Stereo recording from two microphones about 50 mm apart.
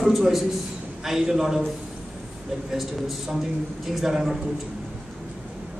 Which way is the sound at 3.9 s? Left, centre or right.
Centre.